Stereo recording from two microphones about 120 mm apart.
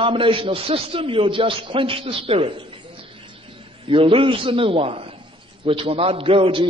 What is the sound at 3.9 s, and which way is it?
A man's voice, 50° right (ahead or behind).